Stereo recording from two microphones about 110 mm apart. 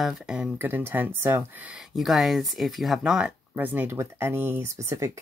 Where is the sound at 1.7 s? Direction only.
5° right (ahead or behind); by 4.7 s 20° right (ahead or behind).